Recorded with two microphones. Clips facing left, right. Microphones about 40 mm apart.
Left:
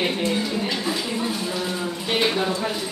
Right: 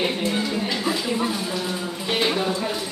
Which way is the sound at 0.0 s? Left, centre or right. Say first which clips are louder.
Even; centre.